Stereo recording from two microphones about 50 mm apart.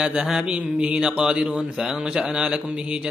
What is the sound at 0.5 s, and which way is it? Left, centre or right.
A man's voice, centre.